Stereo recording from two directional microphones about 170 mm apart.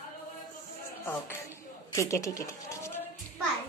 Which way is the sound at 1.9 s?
20° left (ahead or behind).